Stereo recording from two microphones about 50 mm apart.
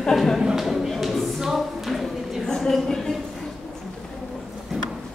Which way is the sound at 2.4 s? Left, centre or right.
Centre.